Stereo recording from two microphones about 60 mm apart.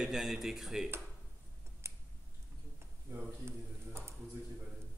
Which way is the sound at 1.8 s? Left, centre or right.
Right.